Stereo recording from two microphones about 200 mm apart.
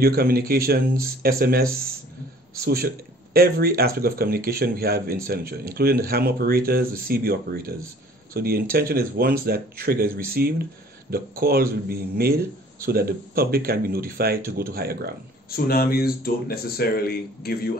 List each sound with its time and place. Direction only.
0.0 s speech: 50° right (ahead or behind)
15.5 s speech: 50° left (ahead or behind)